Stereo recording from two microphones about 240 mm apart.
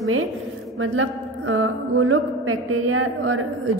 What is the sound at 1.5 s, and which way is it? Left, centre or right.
A woman's voice, right.